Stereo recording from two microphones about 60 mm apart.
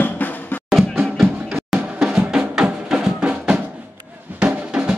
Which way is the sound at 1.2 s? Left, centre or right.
Centre.